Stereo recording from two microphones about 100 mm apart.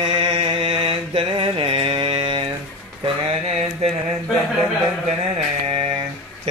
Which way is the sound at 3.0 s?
90° right.